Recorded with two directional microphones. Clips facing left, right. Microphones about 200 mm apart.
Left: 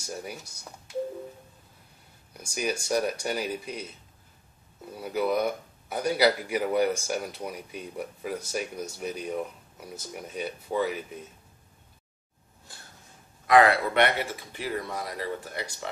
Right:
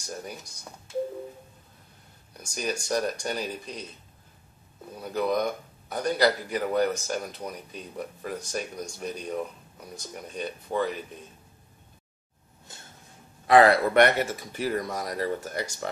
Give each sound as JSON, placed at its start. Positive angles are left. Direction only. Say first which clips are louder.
{"t": 0.0, "sound": "speech", "louder": "left 1 dB", "side_deg": 10}
{"t": 2.4, "sound": "speech", "louder": "left 1 dB", "side_deg": 10}
{"t": 5.0, "sound": "speech", "louder": "even", "side_deg": 10}
{"t": 12.7, "sound": "a sound", "louder": "right 2 dB", "side_deg": -20}
{"t": 13.5, "sound": "speech", "louder": "right 2 dB", "side_deg": -35}